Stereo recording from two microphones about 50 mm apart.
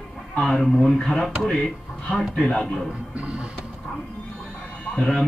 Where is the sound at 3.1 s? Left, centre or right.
Right.